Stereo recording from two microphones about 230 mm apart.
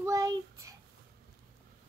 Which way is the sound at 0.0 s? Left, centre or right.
Centre.